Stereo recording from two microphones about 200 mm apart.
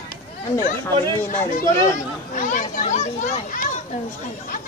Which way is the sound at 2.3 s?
40° left (ahead or behind).